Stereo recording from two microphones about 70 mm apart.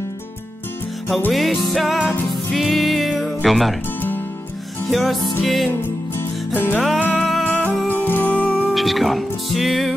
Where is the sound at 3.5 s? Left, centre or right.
Centre.